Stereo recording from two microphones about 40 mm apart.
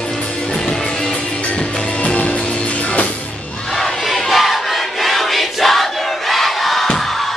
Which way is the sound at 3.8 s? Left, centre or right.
Centre.